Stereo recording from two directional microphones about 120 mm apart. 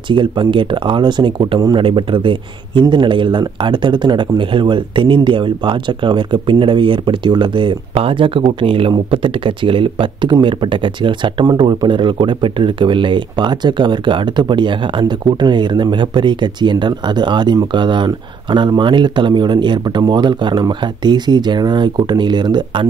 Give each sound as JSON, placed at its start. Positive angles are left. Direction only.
{"t": 0.1, "sound": "a man's voice", "side_deg": -40}